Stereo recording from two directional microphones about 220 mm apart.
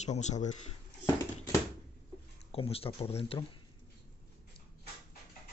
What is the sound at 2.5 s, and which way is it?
Speech, 25° left (ahead or behind).